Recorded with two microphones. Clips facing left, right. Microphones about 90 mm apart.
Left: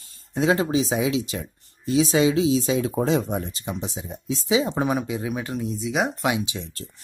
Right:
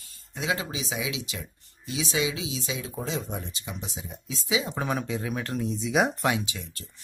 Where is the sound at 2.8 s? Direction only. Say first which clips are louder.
Left 10 dB; 60° left (ahead or behind); by 4.9 s 25° left (ahead or behind).